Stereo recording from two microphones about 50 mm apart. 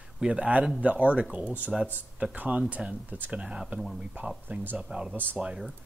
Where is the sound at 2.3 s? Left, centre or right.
Right.